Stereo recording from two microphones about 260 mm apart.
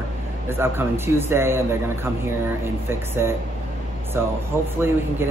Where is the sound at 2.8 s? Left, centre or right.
Centre.